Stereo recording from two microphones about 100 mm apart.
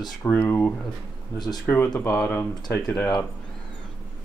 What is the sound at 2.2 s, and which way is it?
Speech, 20° left (ahead or behind).